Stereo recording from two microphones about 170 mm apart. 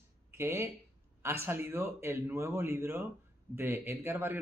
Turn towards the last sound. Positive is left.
turn(degrees=-10)  # may be behind; listen again after turning